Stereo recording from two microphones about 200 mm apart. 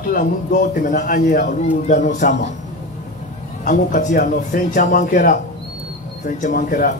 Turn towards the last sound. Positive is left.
turn(degrees=45)  # may be behind; listen again after turning